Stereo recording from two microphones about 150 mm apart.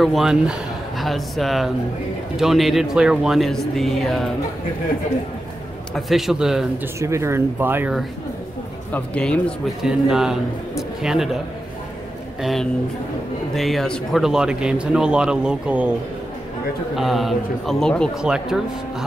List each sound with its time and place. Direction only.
0.0 s a man's voice: centre (ahead or behind)
5.9 s a man's voice: centre (ahead or behind)
7.0 s speech: 20° right (ahead or behind)
8.9 s speech: 5° left (ahead or behind)
9.8 s a man's voice: 5° right (ahead or behind)
12.4 s a man's voice: centre (ahead or behind)
16.9 s a man's voice: centre (ahead or behind)